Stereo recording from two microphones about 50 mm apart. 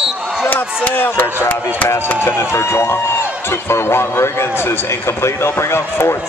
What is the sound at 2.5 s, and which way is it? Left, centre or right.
A man's voice, left.